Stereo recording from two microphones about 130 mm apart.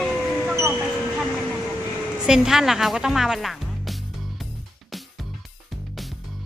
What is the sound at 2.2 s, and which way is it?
Speech, 5° right (ahead or behind).